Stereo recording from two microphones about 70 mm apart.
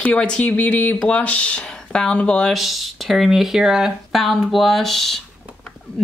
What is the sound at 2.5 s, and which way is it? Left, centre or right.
Speech, centre.